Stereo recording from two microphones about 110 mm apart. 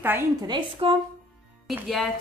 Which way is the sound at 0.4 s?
45° right (ahead or behind).